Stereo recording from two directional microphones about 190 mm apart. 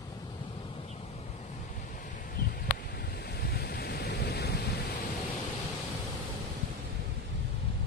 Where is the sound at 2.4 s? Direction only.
55° left (ahead or behind).